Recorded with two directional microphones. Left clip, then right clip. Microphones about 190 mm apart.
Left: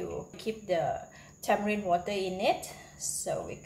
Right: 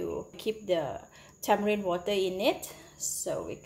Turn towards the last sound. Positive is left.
turn(degrees=-40)  # may be behind; listen again after turning